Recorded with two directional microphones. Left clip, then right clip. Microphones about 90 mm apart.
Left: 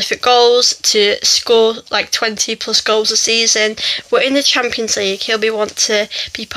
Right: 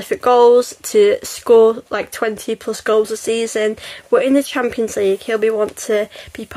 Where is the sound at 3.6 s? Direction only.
35° right (ahead or behind).